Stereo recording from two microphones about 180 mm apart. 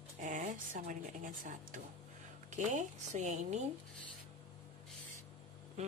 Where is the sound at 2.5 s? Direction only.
40° right (ahead or behind).